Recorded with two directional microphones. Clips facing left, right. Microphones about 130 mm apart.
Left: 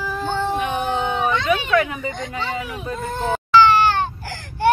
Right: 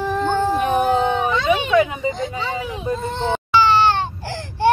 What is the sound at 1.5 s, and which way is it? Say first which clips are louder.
Speech: right 3 dB; 20° right (ahead or behind).